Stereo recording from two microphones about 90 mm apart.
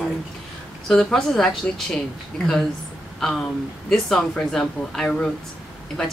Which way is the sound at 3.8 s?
5° left (ahead or behind).